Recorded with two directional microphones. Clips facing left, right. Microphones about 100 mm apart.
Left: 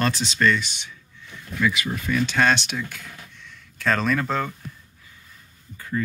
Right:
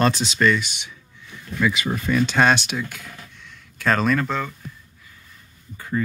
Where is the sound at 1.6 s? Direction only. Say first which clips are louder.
Right 2 dB; 25° right (ahead or behind).